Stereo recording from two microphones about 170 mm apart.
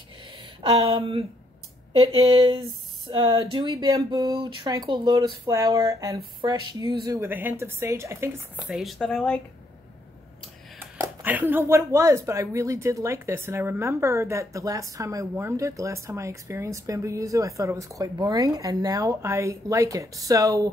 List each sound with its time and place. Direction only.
0.6 s speech: 35° right (ahead or behind); by 9.4 s 5° left (ahead or behind)
10.8 s speech: 10° right (ahead or behind)